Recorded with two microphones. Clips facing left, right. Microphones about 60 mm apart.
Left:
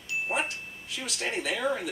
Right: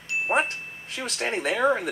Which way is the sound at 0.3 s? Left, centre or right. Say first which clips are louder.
Right 9 dB; right.